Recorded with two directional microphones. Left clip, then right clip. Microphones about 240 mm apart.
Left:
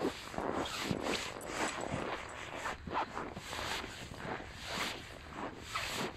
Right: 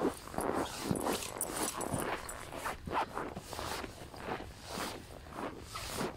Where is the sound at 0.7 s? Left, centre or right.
Left.